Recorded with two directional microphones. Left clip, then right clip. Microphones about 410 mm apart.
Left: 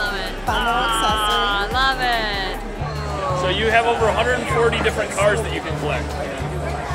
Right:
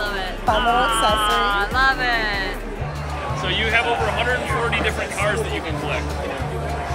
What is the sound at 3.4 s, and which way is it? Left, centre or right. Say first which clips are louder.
Speech: left 2 dB; centre.